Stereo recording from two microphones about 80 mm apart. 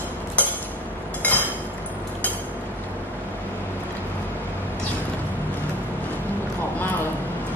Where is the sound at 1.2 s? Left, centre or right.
Left.